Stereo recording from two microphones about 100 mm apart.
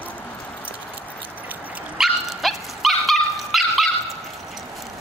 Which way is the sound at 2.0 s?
Centre (ahead or behind).